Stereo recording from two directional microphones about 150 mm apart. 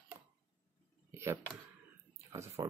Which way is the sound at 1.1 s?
20° right (ahead or behind).